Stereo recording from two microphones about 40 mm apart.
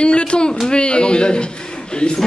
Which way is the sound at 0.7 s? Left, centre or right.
Left.